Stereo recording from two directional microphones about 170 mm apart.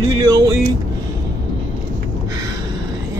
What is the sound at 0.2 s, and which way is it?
Speech, 20° right (ahead or behind).